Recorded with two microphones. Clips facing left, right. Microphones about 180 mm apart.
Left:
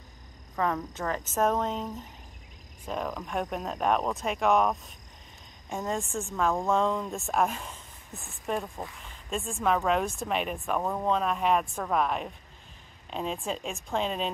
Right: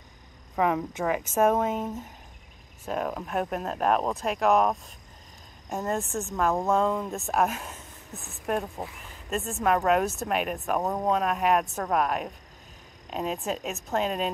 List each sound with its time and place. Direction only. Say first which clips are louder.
0.6 s a woman's voice: right 4 dB; 15° right (ahead or behind)
10.8 s speech: right 2 dB; 20° right (ahead or behind)
11.1 s speech: right 1 dB; 5° right (ahead or behind)